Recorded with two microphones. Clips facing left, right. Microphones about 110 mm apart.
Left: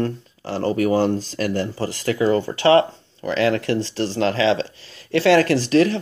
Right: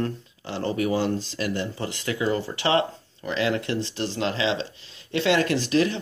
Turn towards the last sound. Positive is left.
turn(degrees=35)  # may be behind; listen again after turning